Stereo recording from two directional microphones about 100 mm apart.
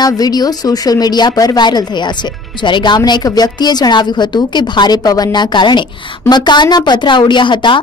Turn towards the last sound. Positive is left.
turn(degrees=55)  # may be behind; listen again after turning